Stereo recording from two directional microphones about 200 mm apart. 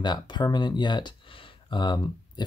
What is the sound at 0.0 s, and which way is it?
Speech, 20° left (ahead or behind).